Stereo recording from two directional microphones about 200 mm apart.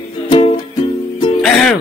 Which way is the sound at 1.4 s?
5° left (ahead or behind).